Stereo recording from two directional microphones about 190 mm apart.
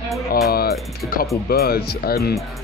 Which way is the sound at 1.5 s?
55° left (ahead or behind).